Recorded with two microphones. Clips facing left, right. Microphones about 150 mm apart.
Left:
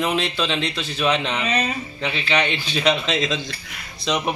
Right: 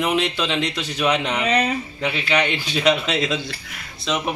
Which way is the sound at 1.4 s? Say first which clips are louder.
Right 6 dB; 60° right (ahead or behind).